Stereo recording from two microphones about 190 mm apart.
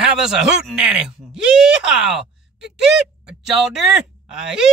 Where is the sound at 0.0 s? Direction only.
5° right (ahead or behind).